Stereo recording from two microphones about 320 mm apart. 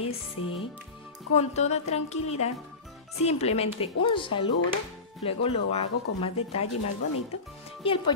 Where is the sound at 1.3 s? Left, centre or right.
Centre.